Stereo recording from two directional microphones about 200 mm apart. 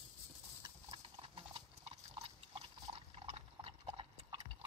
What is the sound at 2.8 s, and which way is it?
Clip-clop, 25° right (ahead or behind).